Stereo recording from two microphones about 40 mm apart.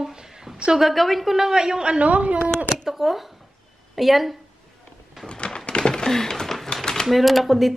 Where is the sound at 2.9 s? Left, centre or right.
Centre.